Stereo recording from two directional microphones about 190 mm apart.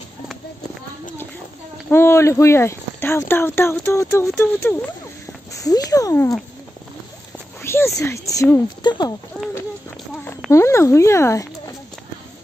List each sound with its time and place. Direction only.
1.9 s speech: 15° left (ahead or behind)
5.5 s speech: 20° left (ahead or behind)
7.6 s speech: 15° left (ahead or behind)
9.3 s speech: 5° left (ahead or behind)